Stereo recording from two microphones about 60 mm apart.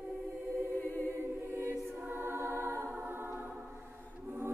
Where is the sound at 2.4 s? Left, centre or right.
Left.